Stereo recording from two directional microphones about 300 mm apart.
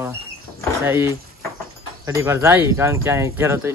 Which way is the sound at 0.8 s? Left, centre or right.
Centre.